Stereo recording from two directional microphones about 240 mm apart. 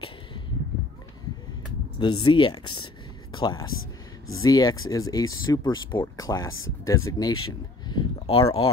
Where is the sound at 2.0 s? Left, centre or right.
Left.